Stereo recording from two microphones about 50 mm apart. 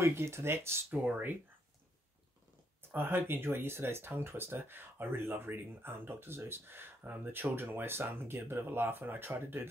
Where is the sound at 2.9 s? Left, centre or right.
Right.